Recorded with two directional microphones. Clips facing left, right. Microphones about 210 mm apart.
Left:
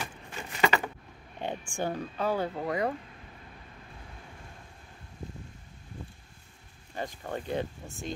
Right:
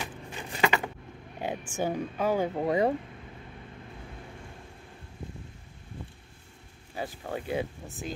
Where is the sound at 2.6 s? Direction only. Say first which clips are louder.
Right 5 dB; 25° right (ahead or behind).